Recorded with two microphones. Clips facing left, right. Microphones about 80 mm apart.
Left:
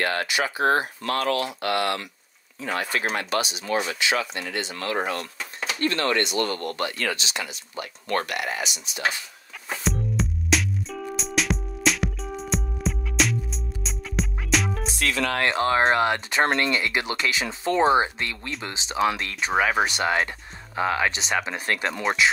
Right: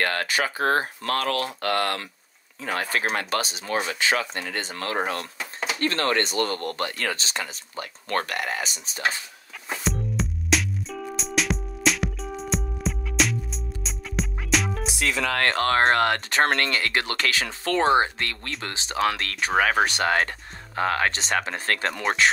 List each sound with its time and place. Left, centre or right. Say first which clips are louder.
0.2 s speech: left 1 dB; right
9.7 s music: left 1 dB; centre
20.7 s speech: even; centre